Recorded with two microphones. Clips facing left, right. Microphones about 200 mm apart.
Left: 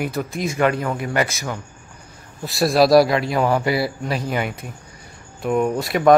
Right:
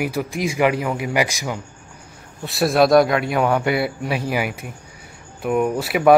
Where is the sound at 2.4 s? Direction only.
Centre (ahead or behind).